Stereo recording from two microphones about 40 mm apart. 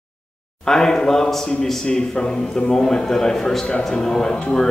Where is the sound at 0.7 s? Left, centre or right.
Centre.